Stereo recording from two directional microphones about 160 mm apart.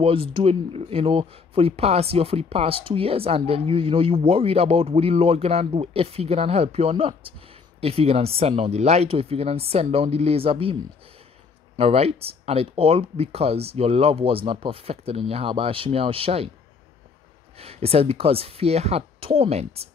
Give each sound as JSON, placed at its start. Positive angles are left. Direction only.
{"t": 0.0, "sound": "speech", "side_deg": -35}
{"t": 11.8, "sound": "speech", "side_deg": -40}
{"t": 17.6, "sound": "speech", "side_deg": -40}